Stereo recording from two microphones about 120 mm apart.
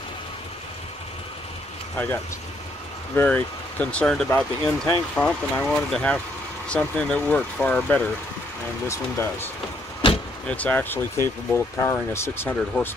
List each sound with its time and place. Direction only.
3.2 s speech: 15° left (ahead or behind)
8.8 s speech: 20° left (ahead or behind)
10.4 s speech: 10° left (ahead or behind)